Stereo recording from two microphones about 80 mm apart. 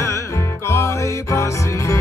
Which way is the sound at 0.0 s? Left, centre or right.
Left.